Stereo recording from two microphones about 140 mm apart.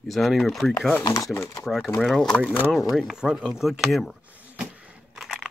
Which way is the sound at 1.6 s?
Centre (ahead or behind).